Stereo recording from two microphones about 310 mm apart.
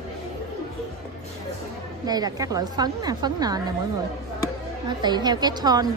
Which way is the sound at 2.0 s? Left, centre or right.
Centre.